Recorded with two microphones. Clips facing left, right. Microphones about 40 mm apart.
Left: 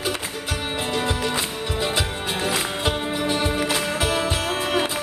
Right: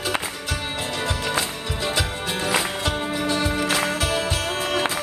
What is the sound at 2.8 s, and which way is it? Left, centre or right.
Music, centre.